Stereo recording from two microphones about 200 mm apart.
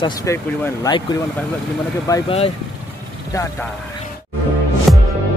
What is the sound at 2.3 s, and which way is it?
Speech, 30° left (ahead or behind).